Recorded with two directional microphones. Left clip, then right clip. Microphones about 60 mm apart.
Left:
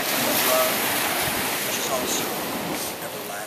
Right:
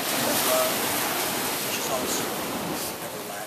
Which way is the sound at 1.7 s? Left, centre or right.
Left.